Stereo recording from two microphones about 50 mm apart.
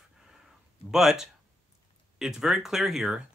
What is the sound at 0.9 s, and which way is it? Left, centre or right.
Speech, centre.